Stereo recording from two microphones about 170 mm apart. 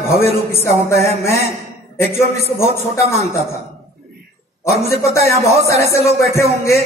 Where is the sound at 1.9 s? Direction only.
15° left (ahead or behind).